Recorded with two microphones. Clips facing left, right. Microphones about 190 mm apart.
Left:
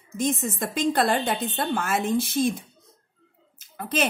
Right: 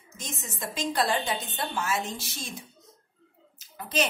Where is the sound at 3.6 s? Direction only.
55° left (ahead or behind).